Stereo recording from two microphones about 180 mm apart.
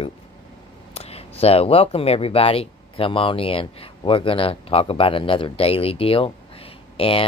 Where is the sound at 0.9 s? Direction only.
35° left (ahead or behind).